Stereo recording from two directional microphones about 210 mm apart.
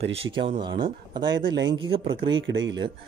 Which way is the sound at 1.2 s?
60° right (ahead or behind).